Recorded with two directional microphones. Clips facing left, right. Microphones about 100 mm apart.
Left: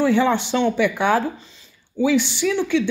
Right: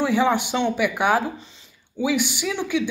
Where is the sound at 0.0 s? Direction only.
15° right (ahead or behind).